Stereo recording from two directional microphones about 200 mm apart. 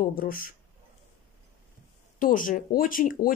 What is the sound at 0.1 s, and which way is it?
Speech, 45° left (ahead or behind).